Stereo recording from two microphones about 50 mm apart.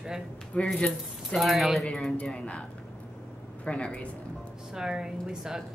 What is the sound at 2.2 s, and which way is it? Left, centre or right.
Speech, left.